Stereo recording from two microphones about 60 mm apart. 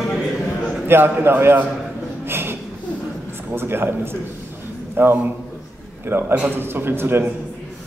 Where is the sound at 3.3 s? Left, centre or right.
Right.